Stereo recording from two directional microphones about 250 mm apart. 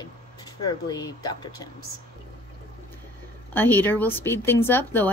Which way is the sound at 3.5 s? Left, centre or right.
Centre.